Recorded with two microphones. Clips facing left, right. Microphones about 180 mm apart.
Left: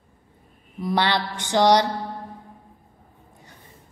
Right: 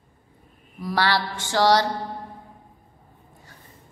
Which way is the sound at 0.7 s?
20° left (ahead or behind).